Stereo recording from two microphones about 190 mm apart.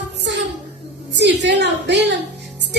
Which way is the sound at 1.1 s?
65° right (ahead or behind).